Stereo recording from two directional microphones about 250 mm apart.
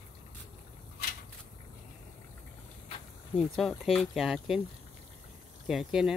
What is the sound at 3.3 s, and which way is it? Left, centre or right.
Speech, centre.